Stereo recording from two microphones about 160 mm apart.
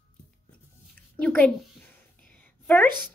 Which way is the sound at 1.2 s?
5° left (ahead or behind).